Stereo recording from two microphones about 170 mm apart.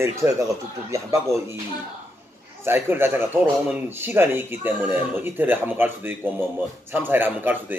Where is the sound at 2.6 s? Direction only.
15° right (ahead or behind).